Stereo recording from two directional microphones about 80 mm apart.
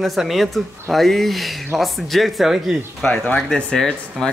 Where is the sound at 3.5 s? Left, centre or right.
Centre.